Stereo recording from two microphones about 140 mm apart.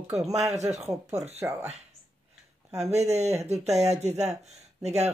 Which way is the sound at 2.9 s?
50° right (ahead or behind).